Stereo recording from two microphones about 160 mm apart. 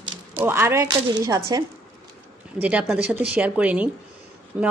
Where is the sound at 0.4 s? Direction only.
15° right (ahead or behind).